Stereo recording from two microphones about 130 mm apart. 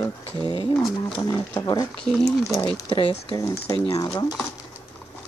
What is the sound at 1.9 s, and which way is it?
Speech, 5° left (ahead or behind).